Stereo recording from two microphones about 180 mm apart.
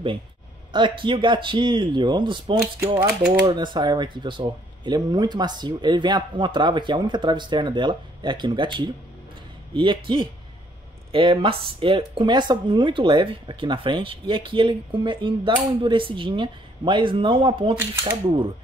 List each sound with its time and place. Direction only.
0.7 s speech: 25° right (ahead or behind)
2.8 s speech: 15° right (ahead or behind)